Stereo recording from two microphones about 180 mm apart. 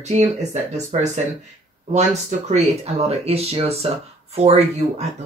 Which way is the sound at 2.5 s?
35° right (ahead or behind).